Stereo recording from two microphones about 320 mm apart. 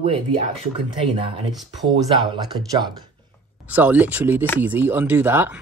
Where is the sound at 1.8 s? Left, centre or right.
Centre.